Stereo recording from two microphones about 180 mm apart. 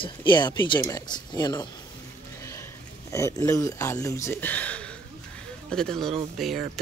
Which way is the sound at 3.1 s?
15° left (ahead or behind).